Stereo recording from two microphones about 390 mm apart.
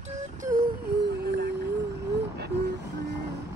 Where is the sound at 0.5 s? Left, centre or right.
Right.